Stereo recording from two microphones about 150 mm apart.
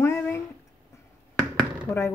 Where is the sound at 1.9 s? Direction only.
15° left (ahead or behind).